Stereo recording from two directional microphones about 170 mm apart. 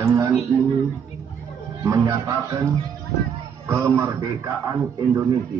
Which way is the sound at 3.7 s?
15° right (ahead or behind).